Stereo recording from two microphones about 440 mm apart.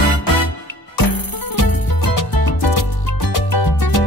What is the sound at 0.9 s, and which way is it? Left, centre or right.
Music, left.